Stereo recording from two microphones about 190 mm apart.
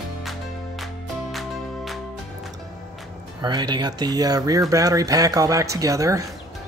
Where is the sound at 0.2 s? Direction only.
Centre (ahead or behind).